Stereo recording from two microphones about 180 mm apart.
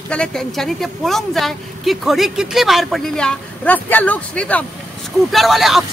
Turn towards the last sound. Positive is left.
turn(degrees=0)  # may be behind; listen again after turning